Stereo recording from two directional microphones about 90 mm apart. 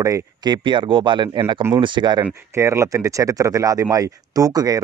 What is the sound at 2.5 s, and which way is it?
Speech, 30° right (ahead or behind).